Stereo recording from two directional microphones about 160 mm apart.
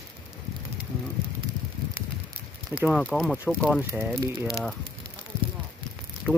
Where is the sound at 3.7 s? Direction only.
10° right (ahead or behind).